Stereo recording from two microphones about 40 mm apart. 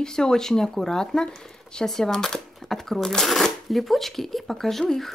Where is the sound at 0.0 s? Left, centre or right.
Centre.